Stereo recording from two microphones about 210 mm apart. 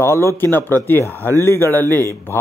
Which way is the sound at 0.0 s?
15° left (ahead or behind).